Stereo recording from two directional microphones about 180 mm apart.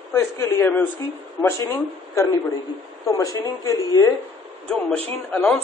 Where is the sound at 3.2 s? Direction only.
20° left (ahead or behind).